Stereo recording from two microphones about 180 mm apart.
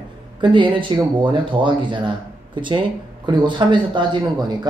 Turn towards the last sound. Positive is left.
turn(degrees=-25)  # may be behind; listen again after turning